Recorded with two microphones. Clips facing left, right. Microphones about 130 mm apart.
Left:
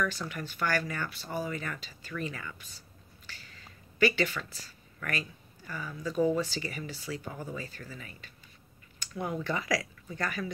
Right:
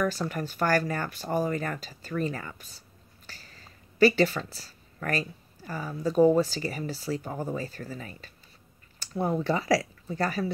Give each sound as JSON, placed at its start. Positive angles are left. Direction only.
{"t": 0.0, "sound": "speech", "side_deg": -40}
{"t": 3.3, "sound": "a sound", "side_deg": -40}
{"t": 5.7, "sound": "speech", "side_deg": -40}